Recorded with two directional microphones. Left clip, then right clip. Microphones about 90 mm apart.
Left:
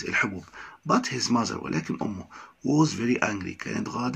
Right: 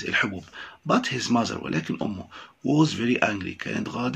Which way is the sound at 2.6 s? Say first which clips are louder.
Right 1 dB; 50° right (ahead or behind).